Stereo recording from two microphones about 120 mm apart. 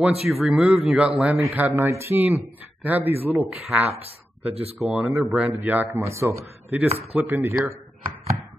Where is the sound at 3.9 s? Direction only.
55° right (ahead or behind).